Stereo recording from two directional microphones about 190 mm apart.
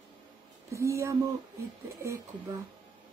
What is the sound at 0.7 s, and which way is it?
A woman's voice, 15° right (ahead or behind).